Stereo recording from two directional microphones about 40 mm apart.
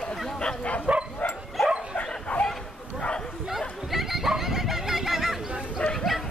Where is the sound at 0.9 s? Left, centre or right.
Right.